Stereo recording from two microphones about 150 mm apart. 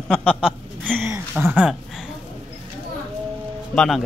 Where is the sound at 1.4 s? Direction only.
10° right (ahead or behind).